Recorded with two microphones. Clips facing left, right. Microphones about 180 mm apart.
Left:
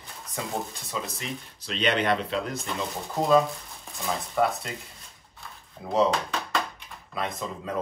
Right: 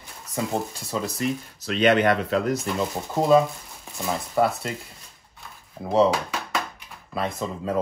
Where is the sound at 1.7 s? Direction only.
50° right (ahead or behind).